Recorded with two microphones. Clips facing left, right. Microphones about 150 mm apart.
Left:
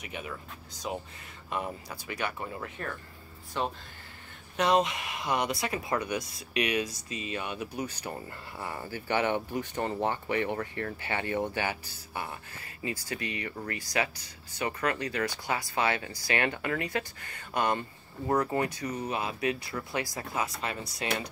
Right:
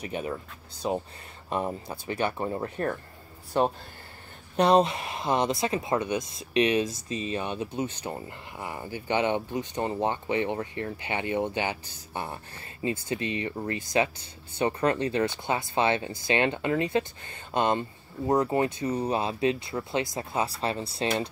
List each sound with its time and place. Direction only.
0.0 s speech: 35° right (ahead or behind)
4.6 s speech: 30° right (ahead or behind)